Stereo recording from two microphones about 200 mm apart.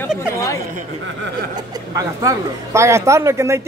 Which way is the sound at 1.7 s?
15° right (ahead or behind).